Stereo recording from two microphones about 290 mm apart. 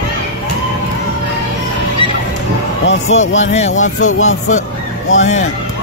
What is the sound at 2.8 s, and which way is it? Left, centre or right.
Speech, left.